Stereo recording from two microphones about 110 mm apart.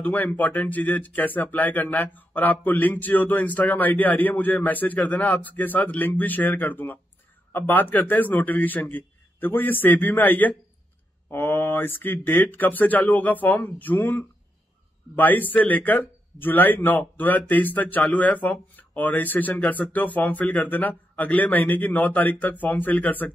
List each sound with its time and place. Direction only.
0.0 s speech: 15° left (ahead or behind)